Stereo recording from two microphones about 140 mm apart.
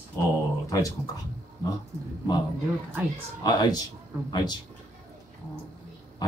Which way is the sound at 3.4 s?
30° left (ahead or behind).